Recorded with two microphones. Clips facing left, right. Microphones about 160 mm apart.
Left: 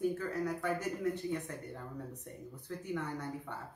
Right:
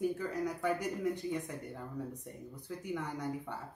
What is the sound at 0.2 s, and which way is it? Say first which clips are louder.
Speech: right 1 dB; 15° right (ahead or behind).